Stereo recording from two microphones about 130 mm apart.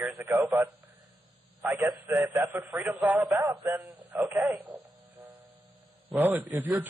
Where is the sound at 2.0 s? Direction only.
25° right (ahead or behind).